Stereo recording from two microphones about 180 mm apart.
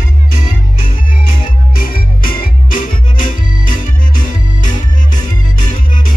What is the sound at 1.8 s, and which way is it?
Music, 50° left (ahead or behind).